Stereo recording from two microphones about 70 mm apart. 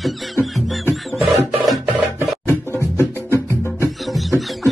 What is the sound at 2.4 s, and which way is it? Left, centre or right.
Music, left.